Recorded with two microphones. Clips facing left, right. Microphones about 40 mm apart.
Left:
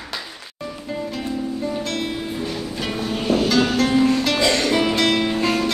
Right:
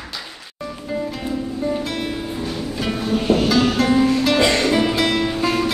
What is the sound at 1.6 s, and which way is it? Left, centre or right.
Music, centre.